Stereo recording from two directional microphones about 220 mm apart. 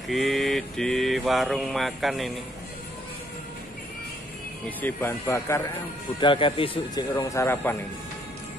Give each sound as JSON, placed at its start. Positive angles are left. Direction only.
{"t": 0.1, "sound": "mantra", "side_deg": 0}
{"t": 4.6, "sound": "a man's voice", "side_deg": 10}
{"t": 7.2, "sound": "speech", "side_deg": 10}